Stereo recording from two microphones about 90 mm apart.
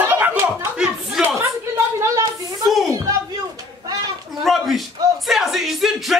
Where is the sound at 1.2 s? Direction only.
5° right (ahead or behind).